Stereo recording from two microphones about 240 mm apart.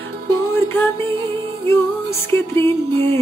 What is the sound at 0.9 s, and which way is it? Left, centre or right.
Music, right.